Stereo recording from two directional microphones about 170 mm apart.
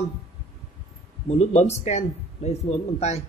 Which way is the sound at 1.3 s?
40° left (ahead or behind).